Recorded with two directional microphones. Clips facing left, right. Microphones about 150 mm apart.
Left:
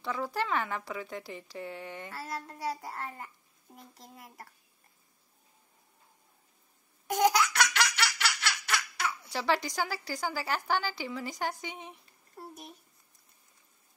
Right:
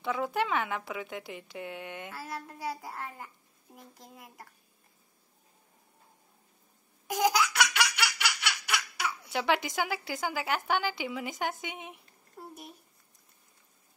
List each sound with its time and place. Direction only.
0.0 s speech: centre (ahead or behind)
7.1 s laughter: 5° right (ahead or behind)